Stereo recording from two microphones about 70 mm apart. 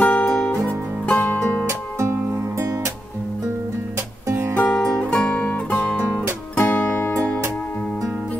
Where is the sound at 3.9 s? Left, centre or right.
Right.